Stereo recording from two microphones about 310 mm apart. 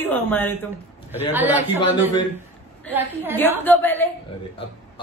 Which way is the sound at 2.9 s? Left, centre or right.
Centre.